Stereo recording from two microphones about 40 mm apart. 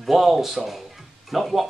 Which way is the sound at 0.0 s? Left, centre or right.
Centre.